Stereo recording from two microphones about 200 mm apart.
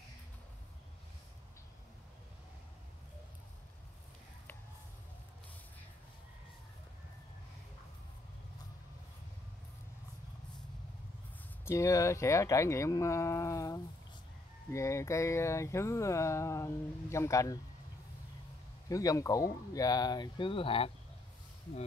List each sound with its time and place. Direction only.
11.6 s speech: 15° left (ahead or behind)
18.9 s speech: 15° left (ahead or behind)